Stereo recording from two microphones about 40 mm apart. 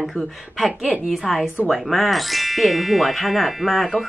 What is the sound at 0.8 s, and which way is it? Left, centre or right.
Speech, right.